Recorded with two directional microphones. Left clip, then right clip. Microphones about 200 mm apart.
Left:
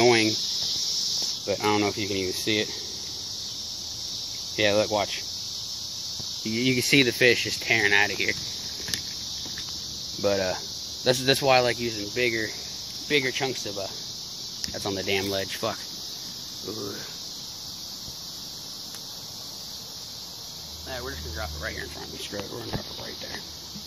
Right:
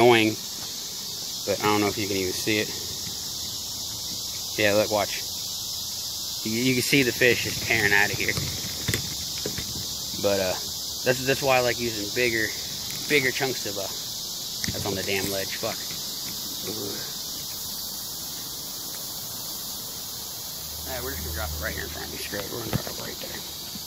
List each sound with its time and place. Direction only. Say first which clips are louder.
0.0 s cricket: right 2 dB; centre (ahead or behind)
1.4 s speech: right 3 dB; centre (ahead or behind)
4.6 s speech: right 1 dB; centre (ahead or behind)
6.4 s speech: even; 5° left (ahead or behind)
7.0 s speech: left 1 dB; 15° left (ahead or behind)
10.2 s speech: right 1 dB; 10° left (ahead or behind)
11.1 s speech: left 1 dB; 30° left (ahead or behind); by 13.8 s 5° left (ahead or behind)
14.9 s cricket: left 2 dB; 30° left (ahead or behind)